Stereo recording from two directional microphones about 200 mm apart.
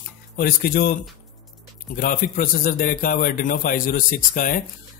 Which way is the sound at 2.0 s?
45° left (ahead or behind).